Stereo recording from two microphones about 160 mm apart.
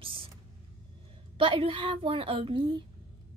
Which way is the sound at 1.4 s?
35° right (ahead or behind).